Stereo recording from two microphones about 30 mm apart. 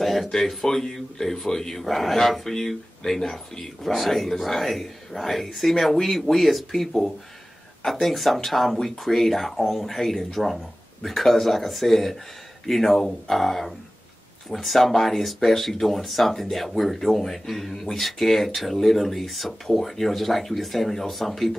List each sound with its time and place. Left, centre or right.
0.0 s speech: centre
0.7 s speech: centre
1.8 s speech: centre